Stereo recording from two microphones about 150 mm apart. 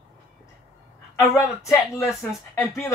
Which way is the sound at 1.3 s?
20° left (ahead or behind).